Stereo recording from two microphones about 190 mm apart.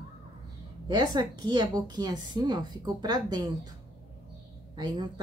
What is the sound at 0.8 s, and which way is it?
A woman's voice, 20° right (ahead or behind).